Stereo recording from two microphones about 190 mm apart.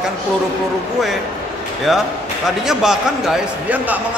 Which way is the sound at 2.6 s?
Centre (ahead or behind).